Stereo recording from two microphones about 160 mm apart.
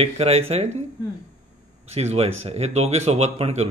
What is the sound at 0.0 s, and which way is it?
Speech, 40° right (ahead or behind).